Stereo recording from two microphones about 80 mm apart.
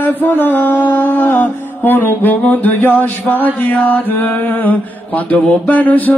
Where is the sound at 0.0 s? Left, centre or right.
Left.